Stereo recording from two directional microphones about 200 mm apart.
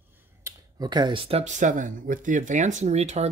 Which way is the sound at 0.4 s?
15° right (ahead or behind).